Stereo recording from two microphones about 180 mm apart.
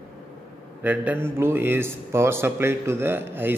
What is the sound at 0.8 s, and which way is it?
A man's voice, 10° right (ahead or behind).